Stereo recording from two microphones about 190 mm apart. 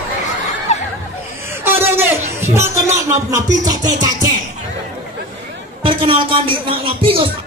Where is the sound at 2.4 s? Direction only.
15° right (ahead or behind).